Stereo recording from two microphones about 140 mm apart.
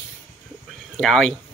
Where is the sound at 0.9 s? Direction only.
5° left (ahead or behind).